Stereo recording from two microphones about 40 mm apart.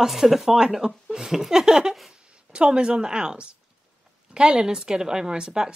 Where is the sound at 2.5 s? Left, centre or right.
Right.